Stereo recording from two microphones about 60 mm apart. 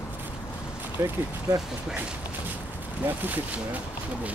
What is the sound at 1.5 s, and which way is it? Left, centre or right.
Speech, right.